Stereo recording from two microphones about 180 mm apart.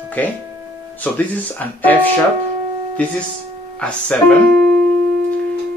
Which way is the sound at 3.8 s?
5° left (ahead or behind).